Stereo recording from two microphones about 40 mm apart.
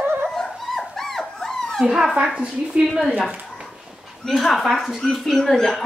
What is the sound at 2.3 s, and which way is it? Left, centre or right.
Speech, right.